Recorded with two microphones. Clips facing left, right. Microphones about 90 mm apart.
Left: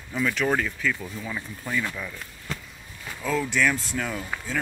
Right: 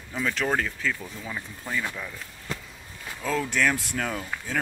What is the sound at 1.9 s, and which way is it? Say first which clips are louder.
Speech: left 1 dB; 15° right (ahead or behind).